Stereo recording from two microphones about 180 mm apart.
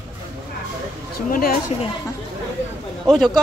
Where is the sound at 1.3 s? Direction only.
55° left (ahead or behind).